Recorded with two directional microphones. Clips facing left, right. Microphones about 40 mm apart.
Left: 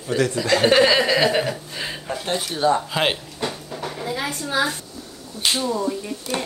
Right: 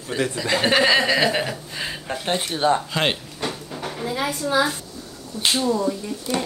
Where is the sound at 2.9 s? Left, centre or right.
Centre.